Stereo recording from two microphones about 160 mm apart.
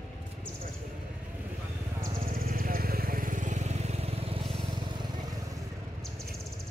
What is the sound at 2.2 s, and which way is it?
Vehicle, 60° right (ahead or behind).